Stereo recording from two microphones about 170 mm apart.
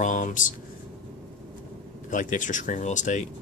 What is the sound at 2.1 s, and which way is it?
Speech, 50° left (ahead or behind).